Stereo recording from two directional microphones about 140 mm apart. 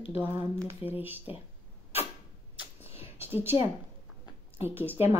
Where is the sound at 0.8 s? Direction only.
40° left (ahead or behind).